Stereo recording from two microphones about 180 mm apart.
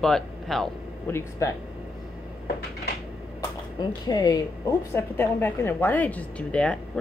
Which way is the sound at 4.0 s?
20° left (ahead or behind).